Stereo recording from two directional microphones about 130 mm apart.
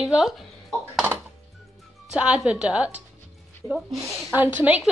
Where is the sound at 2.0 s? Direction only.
10° right (ahead or behind).